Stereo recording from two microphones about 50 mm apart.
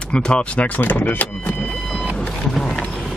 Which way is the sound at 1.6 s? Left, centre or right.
Centre.